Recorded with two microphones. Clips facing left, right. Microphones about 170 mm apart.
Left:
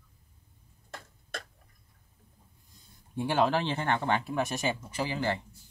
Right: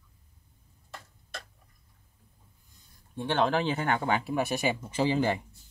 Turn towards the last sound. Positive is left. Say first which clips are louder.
# right 5 dB
turn(degrees=-20)  # may be behind; listen again after turning